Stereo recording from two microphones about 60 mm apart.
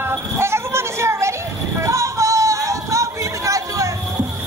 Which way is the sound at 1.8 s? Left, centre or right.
Right.